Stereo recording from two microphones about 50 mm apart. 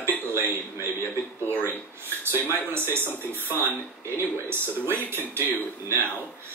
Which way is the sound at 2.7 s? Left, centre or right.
Right.